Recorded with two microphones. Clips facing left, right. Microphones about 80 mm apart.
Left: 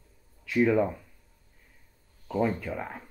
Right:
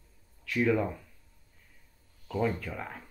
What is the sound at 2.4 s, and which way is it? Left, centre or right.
Speech, centre.